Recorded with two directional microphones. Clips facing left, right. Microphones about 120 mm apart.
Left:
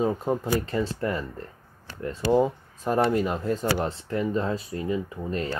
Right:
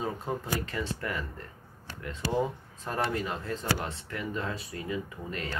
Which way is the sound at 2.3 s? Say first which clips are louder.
Left 8 dB; 15° left (ahead or behind).